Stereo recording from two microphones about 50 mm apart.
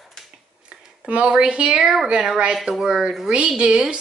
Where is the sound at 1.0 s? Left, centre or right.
Right.